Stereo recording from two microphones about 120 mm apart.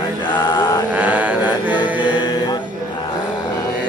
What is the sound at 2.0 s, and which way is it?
Music, 40° left (ahead or behind).